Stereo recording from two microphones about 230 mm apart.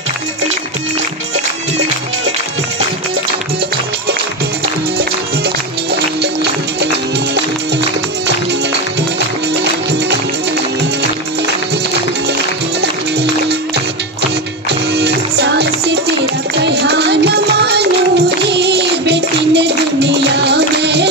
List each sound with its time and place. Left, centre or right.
12.8 s music: right
14.7 s music: right